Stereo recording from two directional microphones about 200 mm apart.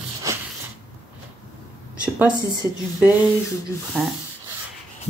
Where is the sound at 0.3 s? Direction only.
15° right (ahead or behind).